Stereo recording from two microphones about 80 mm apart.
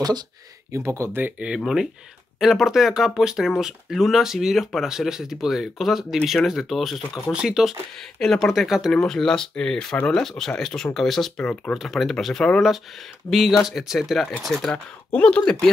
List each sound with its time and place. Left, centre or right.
0.7 s speech: right
1.6 s speech: centre
8.2 s speech: centre
8.9 s speech: centre